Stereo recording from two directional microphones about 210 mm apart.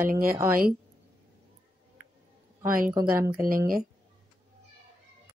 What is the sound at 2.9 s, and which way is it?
Speech, 10° right (ahead or behind).